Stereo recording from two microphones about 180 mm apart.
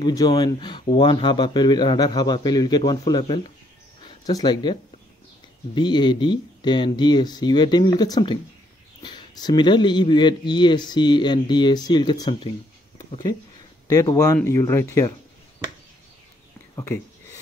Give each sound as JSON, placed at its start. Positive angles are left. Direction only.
{"t": 0.0, "sound": "speech", "side_deg": 25}
{"t": 5.8, "sound": "speech", "side_deg": 25}
{"t": 13.8, "sound": "speech", "side_deg": 20}
{"t": 16.7, "sound": "speech", "side_deg": 15}